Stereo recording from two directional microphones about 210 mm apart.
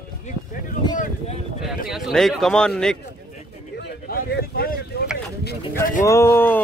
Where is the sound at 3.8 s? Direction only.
45° left (ahead or behind).